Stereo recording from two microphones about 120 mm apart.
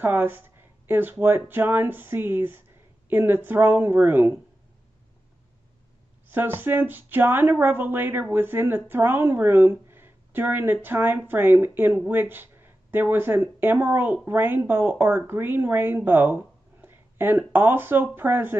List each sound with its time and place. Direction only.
0.0 s a sound: 15° right (ahead or behind)
1.2 s speech: 15° right (ahead or behind)
6.2 s speech: 15° right (ahead or behind)